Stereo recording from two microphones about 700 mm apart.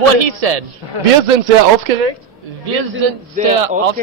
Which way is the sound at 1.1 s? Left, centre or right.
Right.